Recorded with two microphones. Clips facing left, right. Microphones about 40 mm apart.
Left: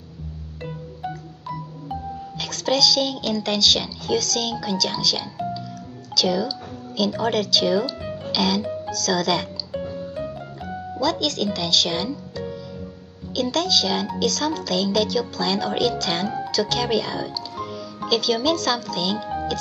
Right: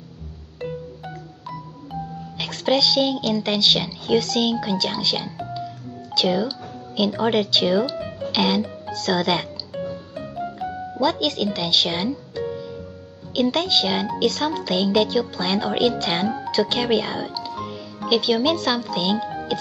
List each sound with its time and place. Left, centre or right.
0.6 s music: centre
2.3 s a child's voice: right
7.9 s music: centre
8.3 s music: right
8.9 s a child's voice: right
9.7 s music: centre
11.0 s a child's voice: centre